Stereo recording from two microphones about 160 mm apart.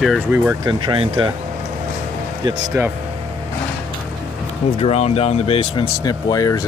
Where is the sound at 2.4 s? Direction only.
20° right (ahead or behind).